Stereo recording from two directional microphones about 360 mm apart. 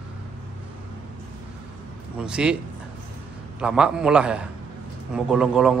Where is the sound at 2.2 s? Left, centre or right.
Centre.